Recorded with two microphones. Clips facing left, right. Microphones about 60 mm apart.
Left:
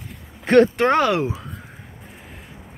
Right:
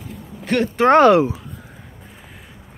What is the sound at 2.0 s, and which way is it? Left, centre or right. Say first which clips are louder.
Boat: left 1 dB; centre.